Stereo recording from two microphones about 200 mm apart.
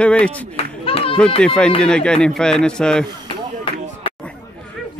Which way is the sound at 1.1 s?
5° left (ahead or behind).